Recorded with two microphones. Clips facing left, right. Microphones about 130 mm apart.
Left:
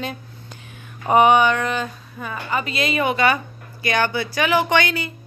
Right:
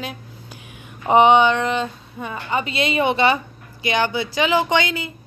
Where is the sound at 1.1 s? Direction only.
25° right (ahead or behind).